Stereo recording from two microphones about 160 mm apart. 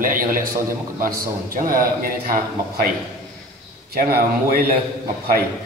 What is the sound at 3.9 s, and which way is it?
Speech, 70° right (ahead or behind).